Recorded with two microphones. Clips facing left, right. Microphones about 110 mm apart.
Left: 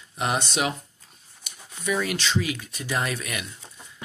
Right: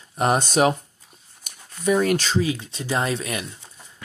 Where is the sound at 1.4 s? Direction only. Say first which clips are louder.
Even; 45° right (ahead or behind).